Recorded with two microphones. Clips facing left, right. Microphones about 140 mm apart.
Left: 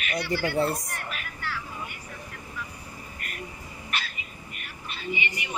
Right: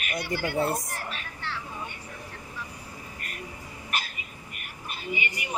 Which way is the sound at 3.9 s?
45° right (ahead or behind).